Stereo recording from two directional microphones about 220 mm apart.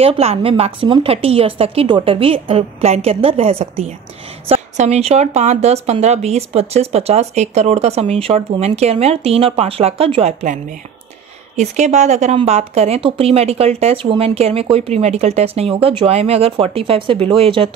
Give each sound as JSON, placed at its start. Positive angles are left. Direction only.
{"t": 0.0, "sound": "a woman's voice", "side_deg": -25}